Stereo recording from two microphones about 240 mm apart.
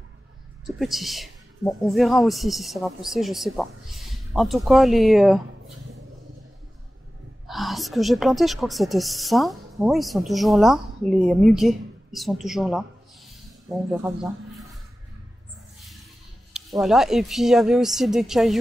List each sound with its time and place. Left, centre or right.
0.7 s speech: centre
7.4 s a woman's voice: centre
16.5 s speech: centre